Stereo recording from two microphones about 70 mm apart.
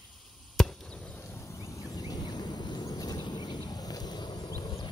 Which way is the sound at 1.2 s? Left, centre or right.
Left.